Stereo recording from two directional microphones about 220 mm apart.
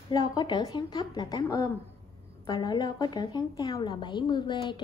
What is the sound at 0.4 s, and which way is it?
A woman's voice, 20° left (ahead or behind).